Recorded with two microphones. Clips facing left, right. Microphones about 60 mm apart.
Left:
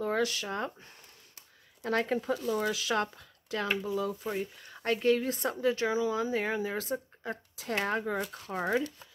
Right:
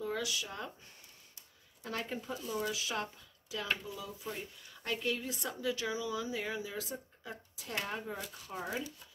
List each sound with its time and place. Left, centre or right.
0.0 s speech: left
1.8 s speech: left
8.0 s speech: left